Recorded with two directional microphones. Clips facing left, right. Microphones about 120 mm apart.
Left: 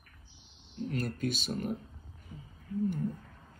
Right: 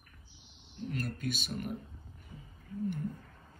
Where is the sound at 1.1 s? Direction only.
50° right (ahead or behind).